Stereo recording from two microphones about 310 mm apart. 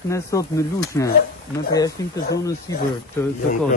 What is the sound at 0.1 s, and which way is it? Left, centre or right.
Speech, centre.